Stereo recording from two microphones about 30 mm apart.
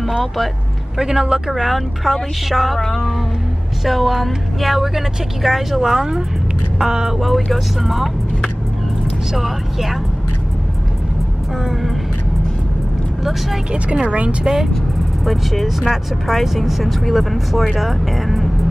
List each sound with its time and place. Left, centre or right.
0.9 s speech: centre
1.5 s speech: centre
2.8 s music: centre
3.8 s speech: centre
6.8 s speech: right
7.2 s speech: centre
9.3 s speech: centre
13.2 s speech: centre
13.7 s a woman's voice: right
15.2 s speech: centre